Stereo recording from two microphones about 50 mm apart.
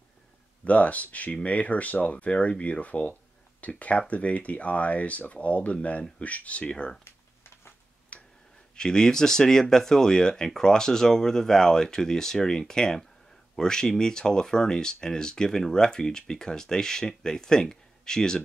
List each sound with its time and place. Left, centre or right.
0.7 s speech: left
7.1 s a sound: left
8.1 s tick-tock: left
8.7 s speech: centre